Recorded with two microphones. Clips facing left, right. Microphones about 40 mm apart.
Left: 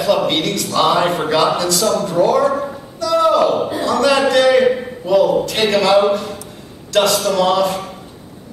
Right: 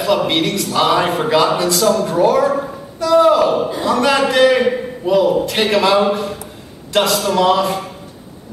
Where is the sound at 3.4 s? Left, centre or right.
Centre.